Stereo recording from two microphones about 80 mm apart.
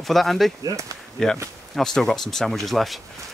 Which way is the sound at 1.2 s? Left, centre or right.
Centre.